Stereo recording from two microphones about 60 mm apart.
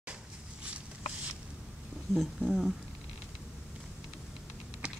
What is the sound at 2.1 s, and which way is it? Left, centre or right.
Speech, centre.